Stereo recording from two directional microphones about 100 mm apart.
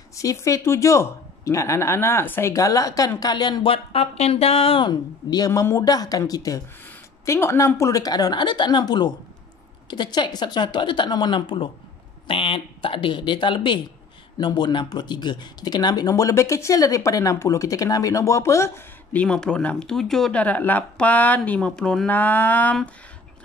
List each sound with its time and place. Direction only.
0.1 s speech: 35° left (ahead or behind)
3.6 s speech: 70° left (ahead or behind)
4.8 s a woman's voice: 45° left (ahead or behind)
5.5 s a woman's voice: 30° left (ahead or behind)
19.1 s speech: 10° left (ahead or behind)